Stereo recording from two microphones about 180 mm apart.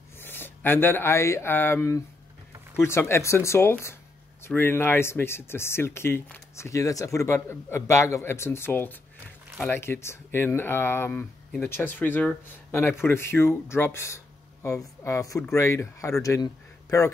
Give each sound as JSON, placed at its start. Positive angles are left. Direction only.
{"t": 0.2, "sound": "speech", "side_deg": 10}